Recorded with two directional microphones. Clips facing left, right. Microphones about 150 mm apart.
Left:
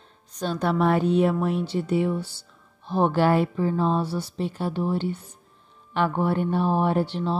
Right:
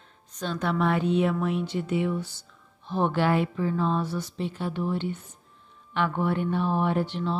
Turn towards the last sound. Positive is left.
turn(degrees=35)  # may be behind; listen again after turning